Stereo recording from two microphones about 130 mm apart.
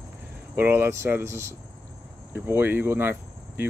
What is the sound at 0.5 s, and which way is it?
Speech, 15° right (ahead or behind).